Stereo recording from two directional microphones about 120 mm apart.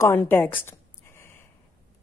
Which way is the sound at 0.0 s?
15° left (ahead or behind).